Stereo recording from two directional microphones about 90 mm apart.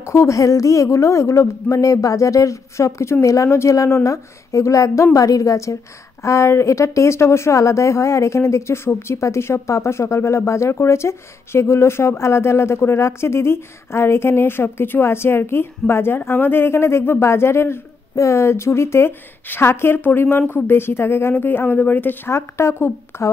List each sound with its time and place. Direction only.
0.0 s a woman's voice: 35° left (ahead or behind)